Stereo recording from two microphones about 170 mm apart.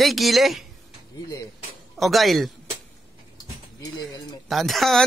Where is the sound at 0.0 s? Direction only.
Centre (ahead or behind).